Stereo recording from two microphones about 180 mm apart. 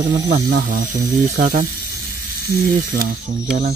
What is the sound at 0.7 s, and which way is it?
Speech, 55° right (ahead or behind).